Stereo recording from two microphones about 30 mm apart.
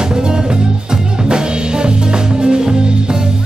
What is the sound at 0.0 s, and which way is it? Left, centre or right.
Music, right.